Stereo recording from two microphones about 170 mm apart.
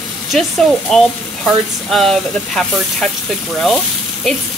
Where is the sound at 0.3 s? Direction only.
Centre (ahead or behind).